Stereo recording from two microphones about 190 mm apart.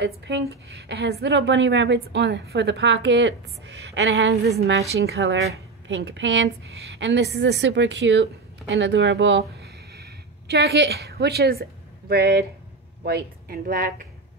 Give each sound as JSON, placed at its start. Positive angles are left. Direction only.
{"t": 0.0, "sound": "a woman's voice", "side_deg": -65}
{"t": 9.6, "sound": "a sound", "side_deg": -55}
{"t": 12.1, "sound": "speech", "side_deg": -55}